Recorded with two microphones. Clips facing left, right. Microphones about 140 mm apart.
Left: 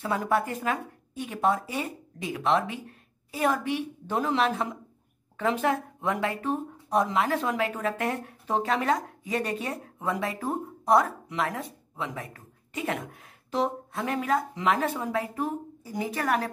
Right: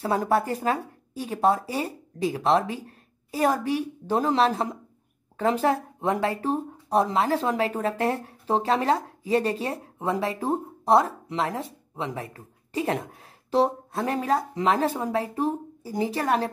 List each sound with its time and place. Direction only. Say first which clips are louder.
0.0 s speech: right 3 dB; 35° right (ahead or behind)